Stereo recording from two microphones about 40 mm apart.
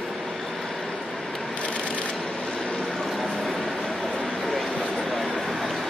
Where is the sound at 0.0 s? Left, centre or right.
Centre.